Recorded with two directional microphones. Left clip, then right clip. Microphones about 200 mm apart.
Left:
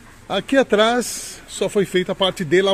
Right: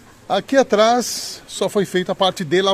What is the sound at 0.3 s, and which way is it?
Speech, 5° right (ahead or behind).